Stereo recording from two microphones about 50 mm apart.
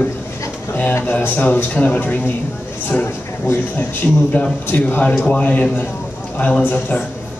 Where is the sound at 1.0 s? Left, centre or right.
Left.